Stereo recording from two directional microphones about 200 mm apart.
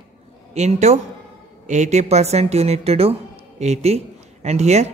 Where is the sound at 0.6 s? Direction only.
35° right (ahead or behind).